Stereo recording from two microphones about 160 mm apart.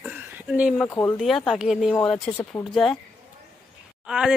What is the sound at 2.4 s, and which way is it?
Speech, 15° left (ahead or behind).